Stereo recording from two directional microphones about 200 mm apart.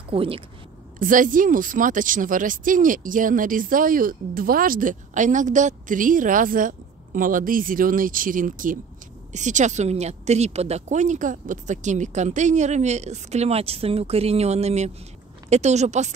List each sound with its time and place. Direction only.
0.1 s speech: 30° right (ahead or behind)
0.9 s speech: 40° right (ahead or behind)